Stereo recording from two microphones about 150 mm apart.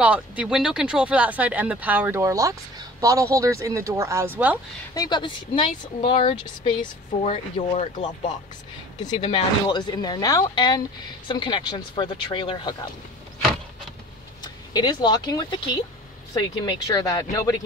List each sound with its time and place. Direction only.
0.0 s speech: 10° right (ahead or behind)
4.9 s speech: 30° left (ahead or behind)
9.0 s speech: 30° left (ahead or behind)
14.4 s speech: 30° left (ahead or behind)